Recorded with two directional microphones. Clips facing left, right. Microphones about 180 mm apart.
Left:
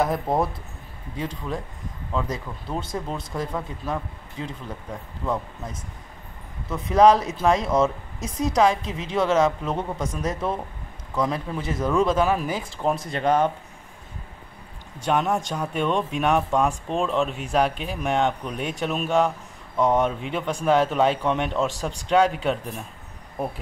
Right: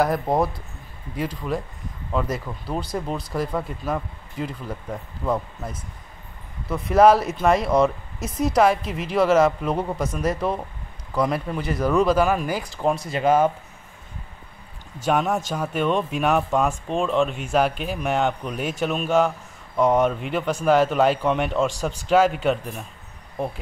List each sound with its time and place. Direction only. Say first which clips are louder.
0.0 s speech: right 2 dB; centre (ahead or behind)
6.7 s speech: right 1 dB; 5° right (ahead or behind)
8.2 s a woman's voice: right 2 dB; 15° left (ahead or behind)
8.5 s speech: right 1 dB; 5° right (ahead or behind)
15.0 s speech: right 1 dB; 5° right (ahead or behind)